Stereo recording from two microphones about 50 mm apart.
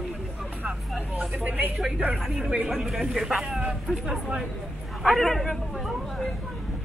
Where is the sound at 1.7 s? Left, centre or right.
Centre.